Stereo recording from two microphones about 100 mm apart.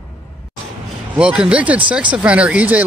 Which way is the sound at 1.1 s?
10° right (ahead or behind).